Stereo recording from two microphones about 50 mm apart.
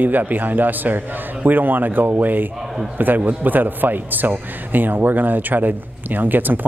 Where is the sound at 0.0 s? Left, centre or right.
Right.